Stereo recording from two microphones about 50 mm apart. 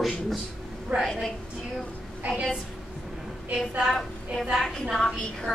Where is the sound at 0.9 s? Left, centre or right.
Right.